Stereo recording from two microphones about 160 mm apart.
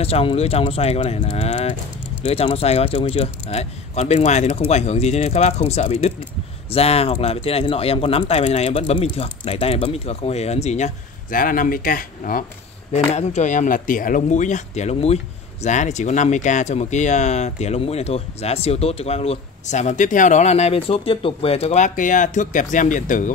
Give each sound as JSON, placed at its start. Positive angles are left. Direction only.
{"t": 0.0, "sound": "speech", "side_deg": 35}
{"t": 13.1, "sound": "speech", "side_deg": 45}